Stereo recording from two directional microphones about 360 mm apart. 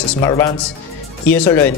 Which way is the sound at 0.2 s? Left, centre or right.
Centre.